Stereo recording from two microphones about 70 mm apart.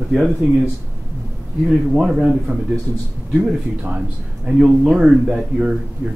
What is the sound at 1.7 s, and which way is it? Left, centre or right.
Speech, centre.